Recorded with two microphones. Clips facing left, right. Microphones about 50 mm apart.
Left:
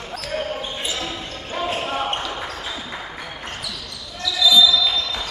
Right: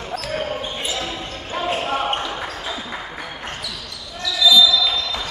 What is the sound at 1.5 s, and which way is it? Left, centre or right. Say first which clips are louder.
Basketball bounce: right 2 dB; centre.